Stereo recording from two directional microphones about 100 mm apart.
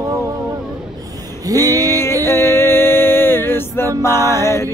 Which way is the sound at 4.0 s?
30° left (ahead or behind).